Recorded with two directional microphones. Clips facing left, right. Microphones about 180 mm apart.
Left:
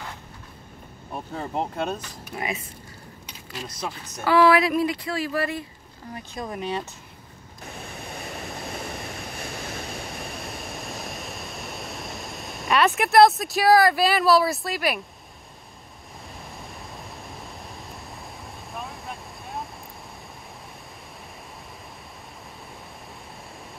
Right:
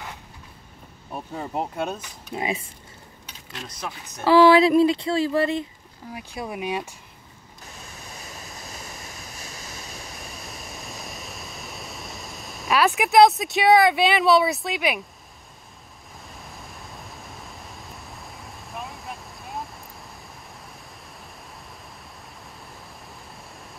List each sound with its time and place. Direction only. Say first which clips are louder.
1.1 s speech: even; 5° right (ahead or behind)
2.3 s speech: right 3 dB; 25° right (ahead or behind)
3.5 s speech: left 2 dB; 5° left (ahead or behind)
4.2 s speech: right 4 dB; 25° right (ahead or behind)
6.1 s speech: right 1 dB; 10° right (ahead or behind)
7.7 s waves: left 6 dB; 60° left (ahead or behind)
9.8 s a sound: left 5 dB; centre (ahead or behind)
16.4 s a sound: left 2 dB; centre (ahead or behind)